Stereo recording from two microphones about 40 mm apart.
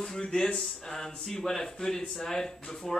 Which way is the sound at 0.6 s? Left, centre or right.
Centre.